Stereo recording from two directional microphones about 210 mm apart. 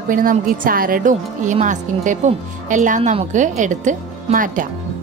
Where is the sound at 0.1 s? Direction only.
40° right (ahead or behind).